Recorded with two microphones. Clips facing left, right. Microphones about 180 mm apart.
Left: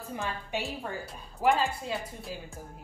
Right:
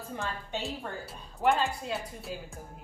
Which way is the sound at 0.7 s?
Centre (ahead or behind).